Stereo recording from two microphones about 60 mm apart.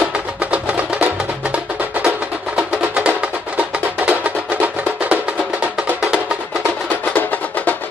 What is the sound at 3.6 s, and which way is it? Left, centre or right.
Music, right.